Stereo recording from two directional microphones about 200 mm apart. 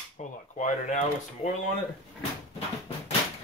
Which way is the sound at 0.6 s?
35° left (ahead or behind).